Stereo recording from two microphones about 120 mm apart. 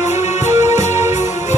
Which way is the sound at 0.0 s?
75° left (ahead or behind).